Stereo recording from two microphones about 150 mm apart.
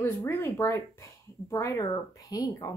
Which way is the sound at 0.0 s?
15° left (ahead or behind).